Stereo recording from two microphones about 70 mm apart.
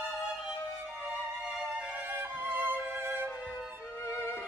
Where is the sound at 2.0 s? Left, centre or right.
Right.